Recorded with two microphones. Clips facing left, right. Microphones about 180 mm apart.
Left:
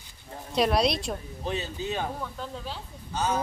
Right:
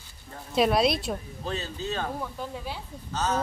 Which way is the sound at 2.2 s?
10° right (ahead or behind).